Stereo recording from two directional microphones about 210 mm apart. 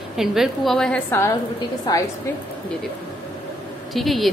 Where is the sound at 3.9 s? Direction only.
Centre (ahead or behind).